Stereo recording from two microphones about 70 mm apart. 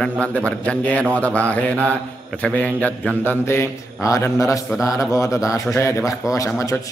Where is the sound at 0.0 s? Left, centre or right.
Centre.